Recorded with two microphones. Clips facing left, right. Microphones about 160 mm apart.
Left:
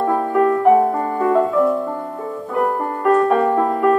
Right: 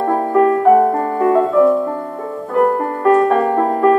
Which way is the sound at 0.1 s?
40° right (ahead or behind).